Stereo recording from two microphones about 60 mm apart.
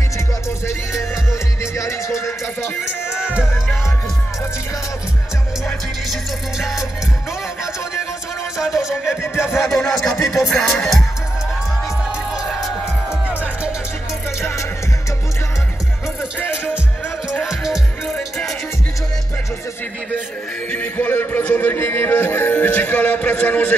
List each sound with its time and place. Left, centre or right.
1.6 s music: left
3.2 s music: centre
8.5 s music: centre
10.2 s speech: centre
10.8 s music: centre
16.3 s music: left
18.0 s music: centre
20.7 s music: left